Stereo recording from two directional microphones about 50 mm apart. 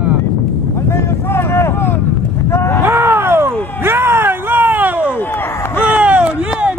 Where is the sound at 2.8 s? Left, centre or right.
Right.